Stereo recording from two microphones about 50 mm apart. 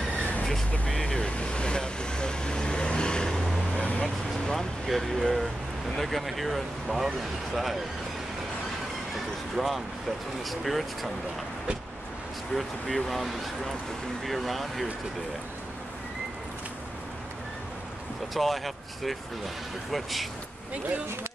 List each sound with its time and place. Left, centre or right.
0.5 s vehicle: centre
3.3 s vehicle: centre
5.9 s speech: centre
10.5 s speech: centre
12.5 s speech: centre
18.3 s speech: centre